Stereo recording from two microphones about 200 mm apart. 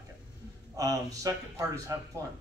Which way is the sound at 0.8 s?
15° right (ahead or behind).